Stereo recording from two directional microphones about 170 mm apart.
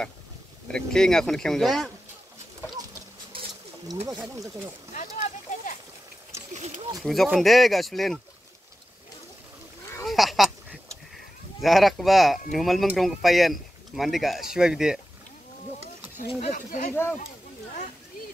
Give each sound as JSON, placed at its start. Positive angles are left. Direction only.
{"t": 0.7, "sound": "speech", "side_deg": 5}
{"t": 3.3, "sound": "a sound", "side_deg": -25}
{"t": 6.5, "sound": "speech", "side_deg": -40}
{"t": 7.0, "sound": "speech", "side_deg": 0}
{"t": 10.0, "sound": "duck", "side_deg": 0}
{"t": 11.6, "sound": "speech", "side_deg": 0}
{"t": 16.3, "sound": "speech", "side_deg": 40}
{"t": 16.9, "sound": "speech", "side_deg": 15}